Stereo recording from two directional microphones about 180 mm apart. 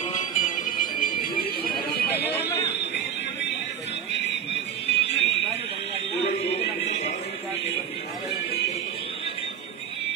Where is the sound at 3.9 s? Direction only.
75° left (ahead or behind).